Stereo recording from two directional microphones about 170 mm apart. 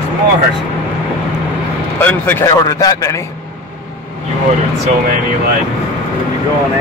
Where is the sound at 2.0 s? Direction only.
15° left (ahead or behind).